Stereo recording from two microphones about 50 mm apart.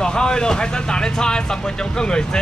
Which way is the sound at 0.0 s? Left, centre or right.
Centre.